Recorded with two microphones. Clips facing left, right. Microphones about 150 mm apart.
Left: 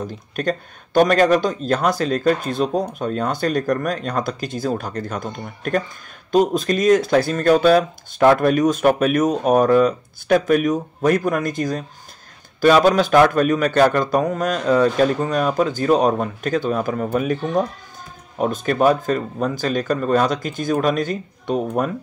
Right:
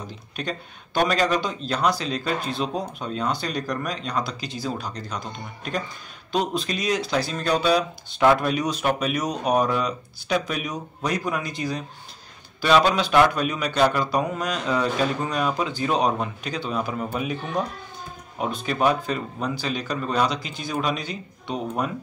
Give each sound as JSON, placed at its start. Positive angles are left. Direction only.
{"t": 0.0, "sound": "speech", "side_deg": 45}
{"t": 18.4, "sound": "speech", "side_deg": 45}